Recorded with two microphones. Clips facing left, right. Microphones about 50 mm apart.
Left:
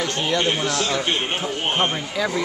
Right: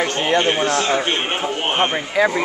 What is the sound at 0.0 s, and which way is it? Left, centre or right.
A man's voice, right.